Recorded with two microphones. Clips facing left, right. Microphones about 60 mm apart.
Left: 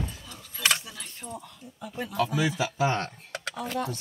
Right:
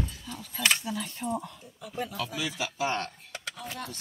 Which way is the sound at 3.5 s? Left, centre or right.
Left.